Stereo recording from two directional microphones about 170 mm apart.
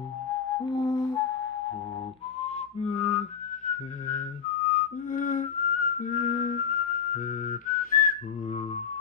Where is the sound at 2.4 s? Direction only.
40° left (ahead or behind).